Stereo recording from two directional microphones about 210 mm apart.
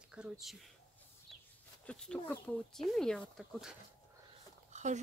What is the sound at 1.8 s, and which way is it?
Speech, 5° left (ahead or behind).